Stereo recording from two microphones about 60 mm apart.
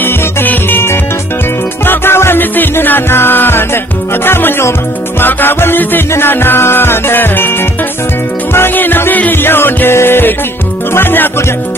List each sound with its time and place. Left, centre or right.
0.0 s music: left
8.5 s music: left